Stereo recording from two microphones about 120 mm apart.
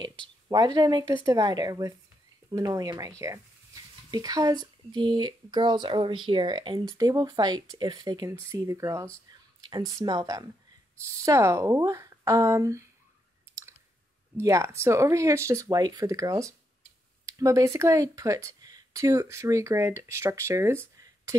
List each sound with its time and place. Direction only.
0.7 s speech: 35° right (ahead or behind)
9.6 s speech: 35° right (ahead or behind)
14.3 s speech: 25° right (ahead or behind)